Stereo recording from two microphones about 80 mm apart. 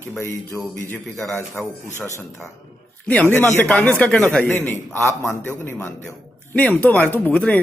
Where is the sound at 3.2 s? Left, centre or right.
Left.